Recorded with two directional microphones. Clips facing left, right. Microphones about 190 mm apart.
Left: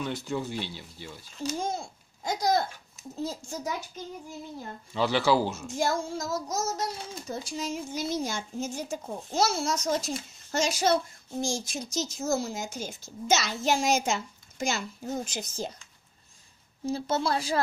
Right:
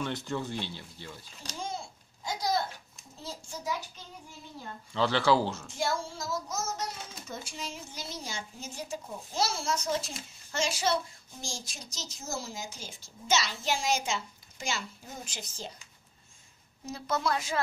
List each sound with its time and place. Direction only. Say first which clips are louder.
0.0 s speech: left 2 dB; 5° left (ahead or behind)
2.2 s a sound: left 5 dB; 45° left (ahead or behind)
3.2 s a child's voice: left 8 dB; 45° left (ahead or behind)
4.9 s speech: left 1 dB; 10° left (ahead or behind)
5.7 s a child's voice: left 4 dB; 45° left (ahead or behind)
16.8 s a woman's voice: left 4 dB; 30° left (ahead or behind)